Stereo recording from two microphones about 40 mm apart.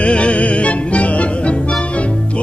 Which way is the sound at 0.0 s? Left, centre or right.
Left.